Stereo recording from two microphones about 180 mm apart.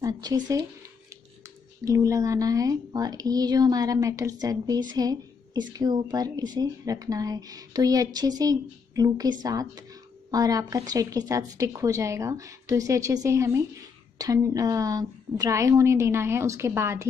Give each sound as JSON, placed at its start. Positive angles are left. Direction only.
{"t": 0.0, "sound": "speech", "side_deg": -20}
{"t": 1.9, "sound": "a woman's voice", "side_deg": -15}